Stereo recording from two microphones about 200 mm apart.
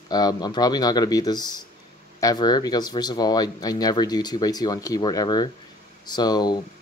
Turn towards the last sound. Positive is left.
turn(degrees=20)  # may be behind; listen again after turning